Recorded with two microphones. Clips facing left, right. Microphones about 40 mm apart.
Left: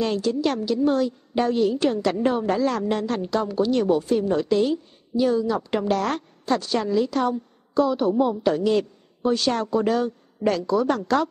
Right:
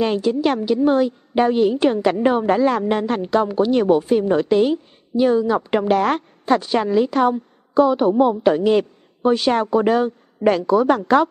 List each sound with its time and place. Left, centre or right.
0.0 s a woman's voice: right